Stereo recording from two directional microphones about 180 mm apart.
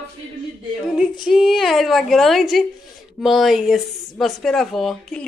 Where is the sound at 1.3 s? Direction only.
Centre (ahead or behind).